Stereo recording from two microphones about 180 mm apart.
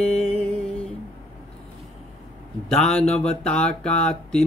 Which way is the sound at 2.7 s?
5° left (ahead or behind).